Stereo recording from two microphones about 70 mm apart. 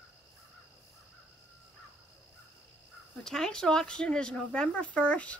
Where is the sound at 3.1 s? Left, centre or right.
Centre.